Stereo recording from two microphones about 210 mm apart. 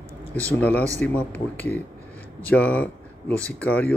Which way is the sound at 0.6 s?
5° left (ahead or behind).